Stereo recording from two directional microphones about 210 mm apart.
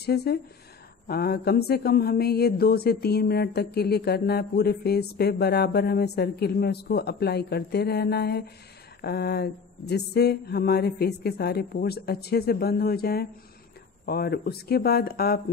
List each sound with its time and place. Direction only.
0.0 s mantra: 50° left (ahead or behind)